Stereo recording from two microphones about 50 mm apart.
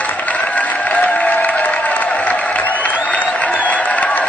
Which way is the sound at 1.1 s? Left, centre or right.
Left.